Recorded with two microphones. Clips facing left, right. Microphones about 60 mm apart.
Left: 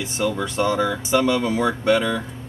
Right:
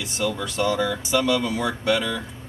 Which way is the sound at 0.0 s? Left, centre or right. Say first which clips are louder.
Left 3 dB; left.